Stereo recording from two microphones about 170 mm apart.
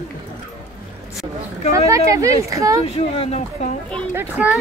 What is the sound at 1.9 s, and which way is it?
Speech, 20° right (ahead or behind).